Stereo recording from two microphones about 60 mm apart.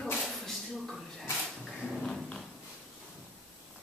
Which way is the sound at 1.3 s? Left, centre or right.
Centre.